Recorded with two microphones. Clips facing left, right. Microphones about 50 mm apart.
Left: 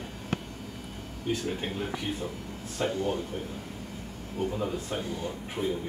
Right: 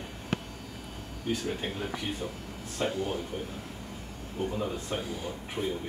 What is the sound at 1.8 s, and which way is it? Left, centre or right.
Speech, centre.